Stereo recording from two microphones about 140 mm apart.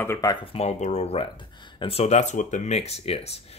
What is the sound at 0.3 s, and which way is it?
Speech, 40° left (ahead or behind).